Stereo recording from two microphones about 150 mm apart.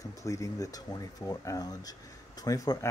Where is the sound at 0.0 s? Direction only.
20° left (ahead or behind).